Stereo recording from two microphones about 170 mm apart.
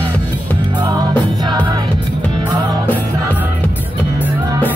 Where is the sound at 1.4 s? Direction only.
25° right (ahead or behind).